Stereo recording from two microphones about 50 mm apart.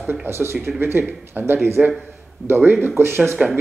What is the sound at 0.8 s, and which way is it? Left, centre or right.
Speech, right.